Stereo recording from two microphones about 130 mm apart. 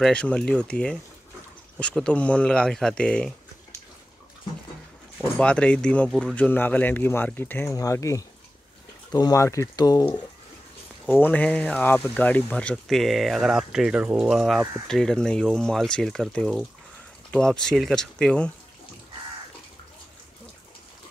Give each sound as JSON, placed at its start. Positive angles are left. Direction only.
{"t": 0.0, "sound": "speech", "side_deg": 5}
{"t": 5.4, "sound": "speech", "side_deg": 10}
{"t": 11.1, "sound": "speech", "side_deg": 15}
{"t": 12.7, "sound": "speech", "side_deg": 0}